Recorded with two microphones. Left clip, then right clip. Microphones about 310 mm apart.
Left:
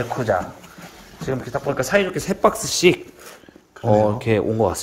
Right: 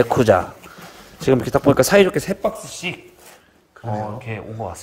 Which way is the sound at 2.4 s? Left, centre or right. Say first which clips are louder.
Left 8 dB; centre.